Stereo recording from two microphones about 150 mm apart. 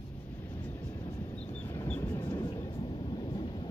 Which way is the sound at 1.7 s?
15° left (ahead or behind).